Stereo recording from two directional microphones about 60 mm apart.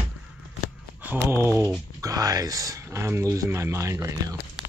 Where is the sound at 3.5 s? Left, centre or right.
Right.